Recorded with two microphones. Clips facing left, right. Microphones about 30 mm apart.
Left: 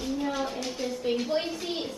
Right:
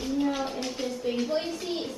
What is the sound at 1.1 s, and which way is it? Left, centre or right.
Speech, centre.